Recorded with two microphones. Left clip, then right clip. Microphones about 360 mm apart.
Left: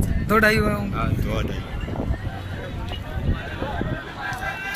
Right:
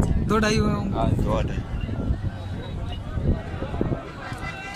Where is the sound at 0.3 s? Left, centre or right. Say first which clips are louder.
Left 5 dB; centre.